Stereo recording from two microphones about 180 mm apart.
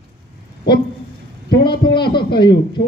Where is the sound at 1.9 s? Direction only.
25° left (ahead or behind).